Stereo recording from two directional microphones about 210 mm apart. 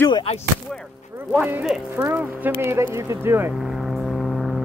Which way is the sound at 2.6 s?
10° right (ahead or behind).